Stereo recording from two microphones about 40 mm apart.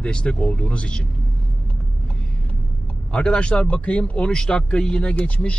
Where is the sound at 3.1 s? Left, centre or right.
Left.